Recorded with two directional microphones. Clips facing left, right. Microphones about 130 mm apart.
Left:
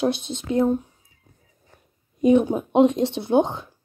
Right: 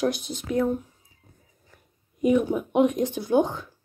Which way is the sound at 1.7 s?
30° left (ahead or behind).